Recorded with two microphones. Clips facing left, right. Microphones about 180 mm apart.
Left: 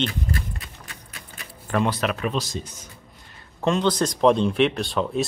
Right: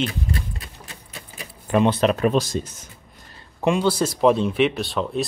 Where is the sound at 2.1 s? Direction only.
45° right (ahead or behind).